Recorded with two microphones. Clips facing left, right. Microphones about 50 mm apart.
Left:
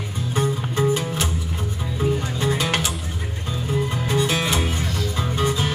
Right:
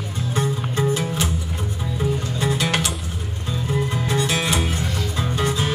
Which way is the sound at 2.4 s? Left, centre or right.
Centre.